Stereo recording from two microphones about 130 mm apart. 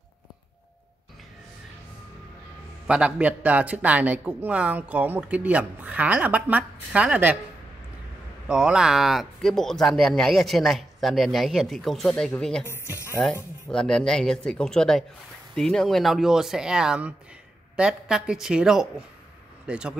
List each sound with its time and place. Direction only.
2.9 s speech: 10° right (ahead or behind)
8.5 s speech: 5° right (ahead or behind)
12.9 s speech: 20° left (ahead or behind)
13.2 s speech: 5° left (ahead or behind)